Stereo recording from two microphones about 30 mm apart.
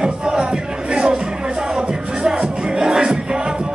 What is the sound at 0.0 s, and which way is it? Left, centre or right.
Music, right.